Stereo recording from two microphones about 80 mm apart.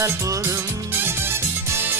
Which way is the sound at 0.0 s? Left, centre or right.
Right.